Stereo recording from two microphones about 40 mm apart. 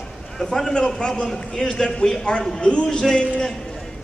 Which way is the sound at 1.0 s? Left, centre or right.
Left.